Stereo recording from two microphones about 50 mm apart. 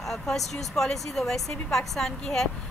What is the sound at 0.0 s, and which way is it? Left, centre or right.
A woman's voice, centre.